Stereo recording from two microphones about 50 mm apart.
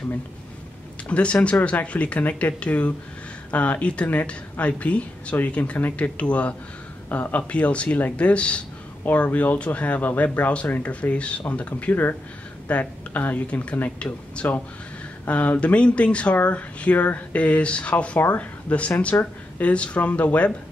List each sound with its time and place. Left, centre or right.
1.0 s speech: left
11.7 s speech: left